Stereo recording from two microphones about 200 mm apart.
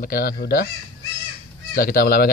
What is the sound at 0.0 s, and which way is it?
Speech, 45° left (ahead or behind).